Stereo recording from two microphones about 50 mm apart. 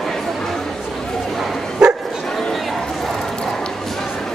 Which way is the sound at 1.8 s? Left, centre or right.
Centre.